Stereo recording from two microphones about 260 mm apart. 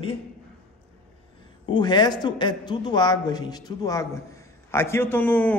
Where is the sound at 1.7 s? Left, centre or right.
Centre.